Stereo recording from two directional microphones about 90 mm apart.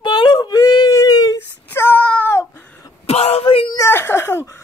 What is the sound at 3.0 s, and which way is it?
Wail, 90° left.